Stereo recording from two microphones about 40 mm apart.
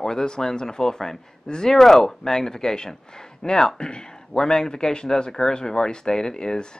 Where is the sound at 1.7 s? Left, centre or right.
Centre.